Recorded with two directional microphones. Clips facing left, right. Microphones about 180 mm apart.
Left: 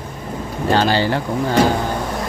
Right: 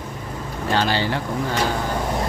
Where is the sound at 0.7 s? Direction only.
35° left (ahead or behind).